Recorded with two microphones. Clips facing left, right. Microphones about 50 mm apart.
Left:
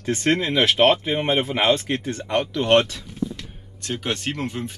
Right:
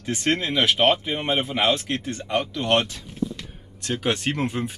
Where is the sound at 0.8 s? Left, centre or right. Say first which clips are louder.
Left 3 dB; centre.